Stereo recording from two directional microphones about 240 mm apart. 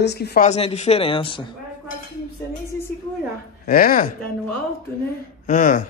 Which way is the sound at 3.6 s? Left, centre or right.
Left.